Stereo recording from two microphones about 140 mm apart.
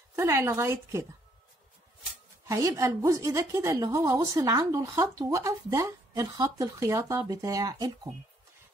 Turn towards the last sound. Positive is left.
turn(degrees=-25)  # may be behind; listen again after turning